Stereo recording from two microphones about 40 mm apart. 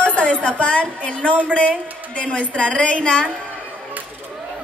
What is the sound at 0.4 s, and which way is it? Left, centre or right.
A woman's voice, left.